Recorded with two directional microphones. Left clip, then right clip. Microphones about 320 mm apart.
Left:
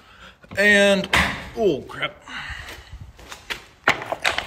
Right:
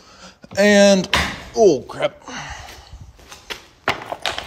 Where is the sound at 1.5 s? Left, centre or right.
Centre.